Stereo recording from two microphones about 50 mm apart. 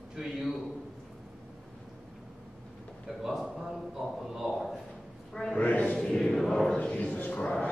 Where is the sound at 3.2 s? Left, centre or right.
Centre.